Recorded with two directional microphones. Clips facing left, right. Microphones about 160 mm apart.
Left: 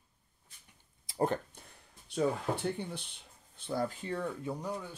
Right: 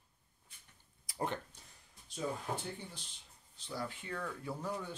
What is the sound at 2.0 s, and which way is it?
Speech, 65° left (ahead or behind).